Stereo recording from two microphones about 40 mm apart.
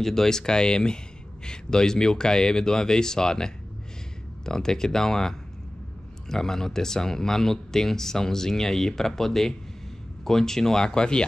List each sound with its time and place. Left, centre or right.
0.0 s speech: centre